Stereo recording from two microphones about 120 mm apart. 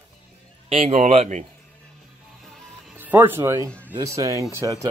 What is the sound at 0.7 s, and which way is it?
Speech, 60° right (ahead or behind).